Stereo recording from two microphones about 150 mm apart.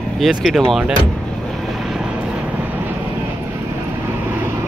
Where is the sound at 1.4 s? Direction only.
Centre (ahead or behind).